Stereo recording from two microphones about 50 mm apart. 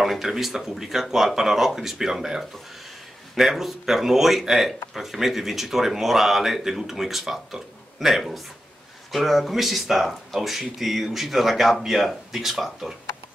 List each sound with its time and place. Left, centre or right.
0.0 s speech: centre